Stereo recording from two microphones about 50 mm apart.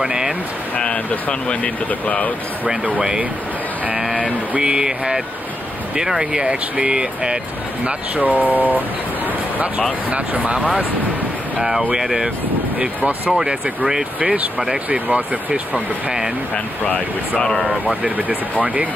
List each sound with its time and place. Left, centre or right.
0.0 s speech: centre
1.5 s speech: left
2.8 s speech: centre
3.9 s speech: centre
8.3 s speech: left
10.0 s speech: right
11.5 s speech: centre
12.7 s speech: right
13.3 s speech: centre
14.9 s speech: right
17.4 s speech: centre
18.0 s speech: right